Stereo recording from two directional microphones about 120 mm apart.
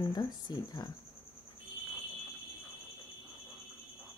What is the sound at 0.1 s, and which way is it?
Speech, 35° left (ahead or behind).